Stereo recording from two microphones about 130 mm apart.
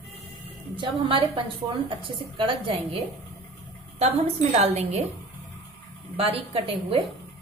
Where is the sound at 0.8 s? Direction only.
40° right (ahead or behind).